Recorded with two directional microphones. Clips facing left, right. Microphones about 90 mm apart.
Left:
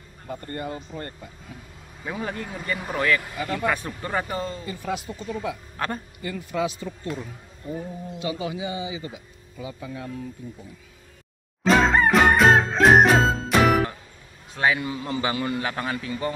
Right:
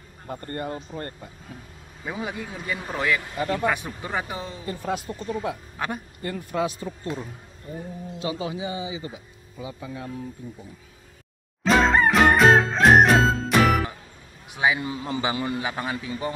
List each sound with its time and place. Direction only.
0.3 s speech: 40° right (ahead or behind)
2.0 s speech: 10° right (ahead or behind)
4.6 s speech: 40° right (ahead or behind)
5.8 s speech: 10° right (ahead or behind)
6.2 s speech: 40° right (ahead or behind)
8.2 s speech: 30° right (ahead or behind)
11.6 s music: centre (ahead or behind)
14.5 s a man's voice: 15° right (ahead or behind)